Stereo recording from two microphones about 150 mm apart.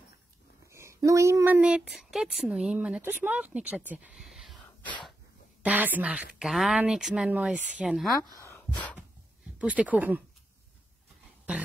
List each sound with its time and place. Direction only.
0.7 s speech: 20° right (ahead or behind); by 4.6 s centre (ahead or behind)
5.6 s a woman's voice: 10° right (ahead or behind)
8.4 s a sound: 20° left (ahead or behind)
9.6 s a woman's voice: 10° right (ahead or behind)
11.5 s a woman's voice: 10° right (ahead or behind)